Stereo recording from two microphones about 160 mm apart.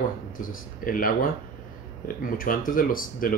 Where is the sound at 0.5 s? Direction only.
60° left (ahead or behind).